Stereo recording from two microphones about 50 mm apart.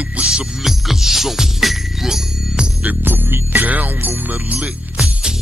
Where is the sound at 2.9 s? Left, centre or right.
Right.